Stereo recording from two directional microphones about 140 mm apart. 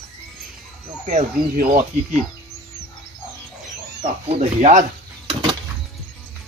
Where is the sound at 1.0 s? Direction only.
60° right (ahead or behind).